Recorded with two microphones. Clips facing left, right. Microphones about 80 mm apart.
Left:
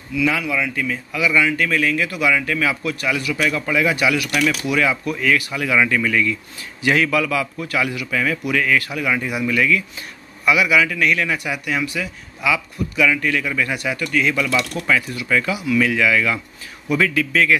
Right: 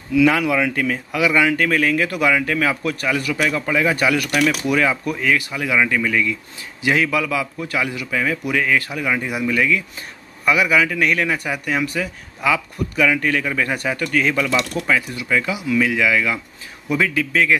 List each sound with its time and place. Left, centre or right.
0.2 s a man's voice: right
3.3 s a man's voice: right
5.1 s a man's voice: centre
10.4 s a man's voice: right
14.8 s a man's voice: right